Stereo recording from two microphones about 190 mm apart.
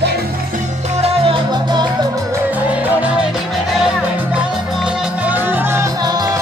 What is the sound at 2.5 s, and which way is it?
Music, 10° right (ahead or behind).